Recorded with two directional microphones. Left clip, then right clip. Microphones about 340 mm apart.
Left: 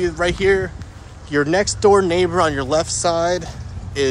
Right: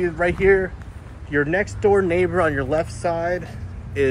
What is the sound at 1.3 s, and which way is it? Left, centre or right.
Speech, left.